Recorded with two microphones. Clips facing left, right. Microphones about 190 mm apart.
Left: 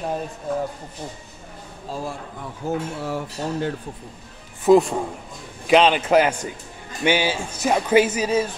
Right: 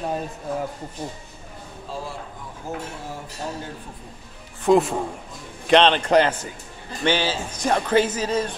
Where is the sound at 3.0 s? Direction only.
70° left (ahead or behind).